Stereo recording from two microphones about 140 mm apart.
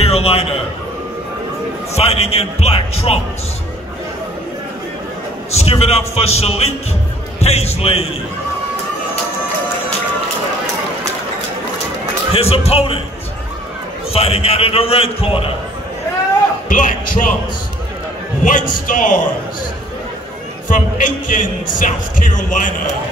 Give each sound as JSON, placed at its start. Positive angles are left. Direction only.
{"t": 0.0, "sound": "a sound", "side_deg": 45}
{"t": 2.0, "sound": "a man's voice", "side_deg": 50}
{"t": 5.5, "sound": "a man's voice", "side_deg": 50}
{"t": 12.4, "sound": "a man's voice", "side_deg": 45}
{"t": 14.1, "sound": "a man's voice", "side_deg": 45}
{"t": 16.6, "sound": "a man's voice", "side_deg": 75}
{"t": 18.4, "sound": "a man's voice", "side_deg": 70}
{"t": 20.7, "sound": "a man's voice", "side_deg": 70}